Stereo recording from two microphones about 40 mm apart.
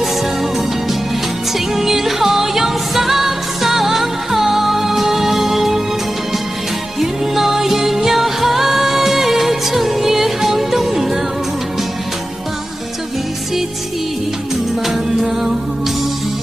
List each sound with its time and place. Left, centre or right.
0.0 s music: centre
1.8 s music: centre
7.0 s music: centre